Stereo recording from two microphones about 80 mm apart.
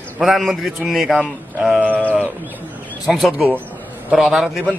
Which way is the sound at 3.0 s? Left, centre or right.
Centre.